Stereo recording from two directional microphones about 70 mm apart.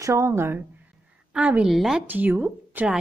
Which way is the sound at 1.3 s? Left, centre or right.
Centre.